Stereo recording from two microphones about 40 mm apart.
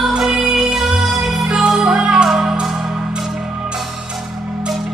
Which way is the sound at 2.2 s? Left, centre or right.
Centre.